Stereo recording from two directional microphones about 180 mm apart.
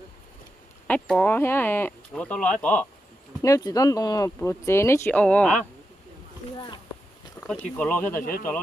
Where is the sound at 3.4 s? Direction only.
20° left (ahead or behind).